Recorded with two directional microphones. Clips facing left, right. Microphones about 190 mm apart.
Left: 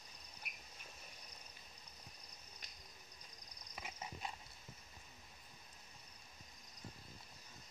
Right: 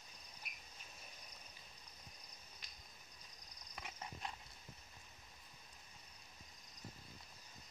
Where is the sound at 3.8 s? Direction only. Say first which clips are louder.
Left 1 dB; 5° left (ahead or behind).